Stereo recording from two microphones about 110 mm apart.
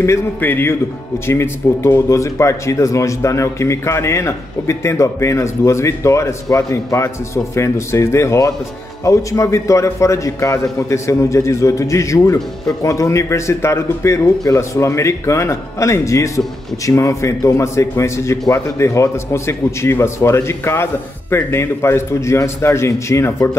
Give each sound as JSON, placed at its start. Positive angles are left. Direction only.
{"t": 0.0, "sound": "speech", "side_deg": 20}